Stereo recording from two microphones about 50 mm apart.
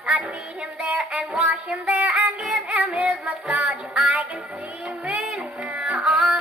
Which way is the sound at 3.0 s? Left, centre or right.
Right.